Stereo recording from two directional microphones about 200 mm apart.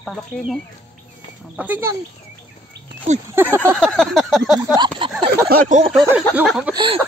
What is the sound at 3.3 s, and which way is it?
Speech, 10° right (ahead or behind).